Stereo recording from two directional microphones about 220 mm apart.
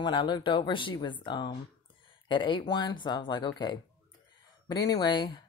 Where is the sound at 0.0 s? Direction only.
20° left (ahead or behind).